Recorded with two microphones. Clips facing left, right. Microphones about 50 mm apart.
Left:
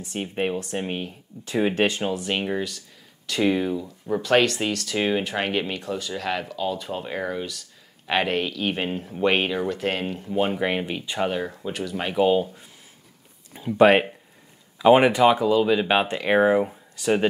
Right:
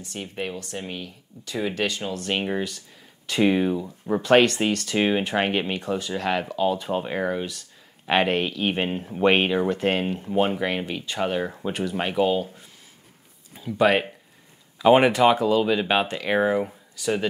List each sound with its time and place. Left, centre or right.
0.1 s speech: left
2.3 s speech: centre
10.5 s speech: centre
11.3 s speech: centre
12.2 s speech: centre
13.6 s speech: left
14.8 s speech: centre
17.0 s speech: left